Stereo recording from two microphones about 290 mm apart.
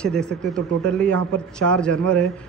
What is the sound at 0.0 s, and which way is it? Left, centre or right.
A man's voice, centre.